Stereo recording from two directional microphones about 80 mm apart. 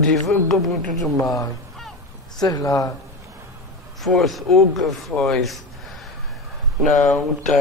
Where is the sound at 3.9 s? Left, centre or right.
Centre.